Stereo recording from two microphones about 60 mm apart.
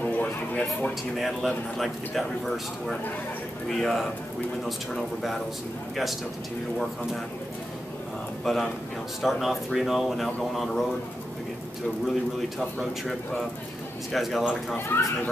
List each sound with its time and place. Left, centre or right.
0.0 s a sound: left
1.1 s speech: centre
8.5 s speech: centre
12.4 s speech: centre
14.1 s speech: centre
14.9 s speech: left